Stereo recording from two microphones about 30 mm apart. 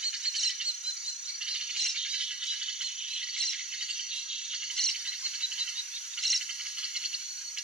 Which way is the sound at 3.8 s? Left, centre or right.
Right.